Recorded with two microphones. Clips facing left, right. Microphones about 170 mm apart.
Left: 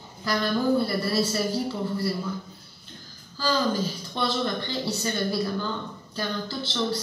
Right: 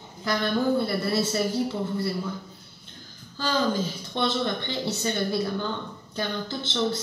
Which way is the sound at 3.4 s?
25° right (ahead or behind).